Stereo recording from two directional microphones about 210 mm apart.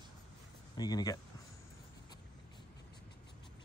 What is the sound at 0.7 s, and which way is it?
Speech, 20° left (ahead or behind).